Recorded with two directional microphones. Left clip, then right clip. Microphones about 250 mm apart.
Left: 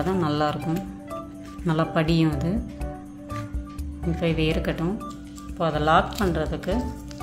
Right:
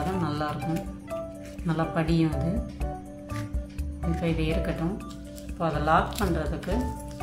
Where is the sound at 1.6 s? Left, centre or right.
Left.